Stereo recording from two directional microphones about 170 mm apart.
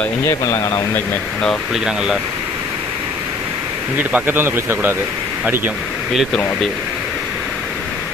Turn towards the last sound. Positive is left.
turn(degrees=0)  # may be behind; listen again after turning